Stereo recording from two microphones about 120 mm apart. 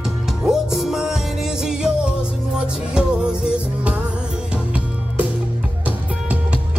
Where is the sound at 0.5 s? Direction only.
Centre (ahead or behind).